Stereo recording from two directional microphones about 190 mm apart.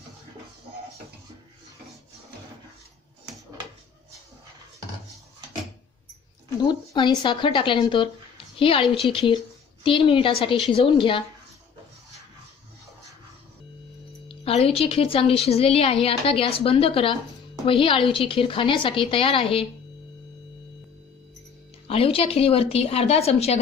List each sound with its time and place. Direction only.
6.7 s a woman's voice: 25° left (ahead or behind)
14.2 s a woman's voice: 30° left (ahead or behind)
21.8 s a woman's voice: 30° left (ahead or behind)